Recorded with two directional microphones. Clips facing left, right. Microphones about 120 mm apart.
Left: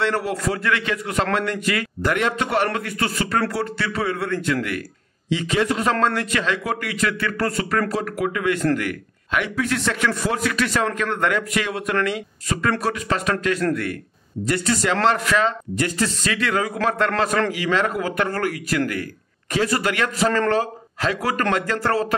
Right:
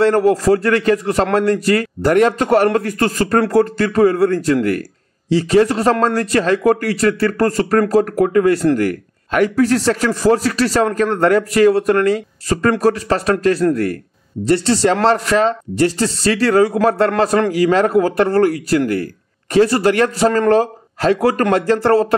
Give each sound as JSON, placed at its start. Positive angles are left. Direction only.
{"t": 0.0, "sound": "a man's voice", "side_deg": -45}